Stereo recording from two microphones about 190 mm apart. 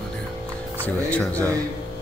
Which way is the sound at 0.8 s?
5° left (ahead or behind).